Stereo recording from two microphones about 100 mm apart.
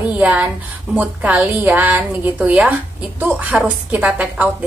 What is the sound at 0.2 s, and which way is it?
A woman's voice, 15° right (ahead or behind).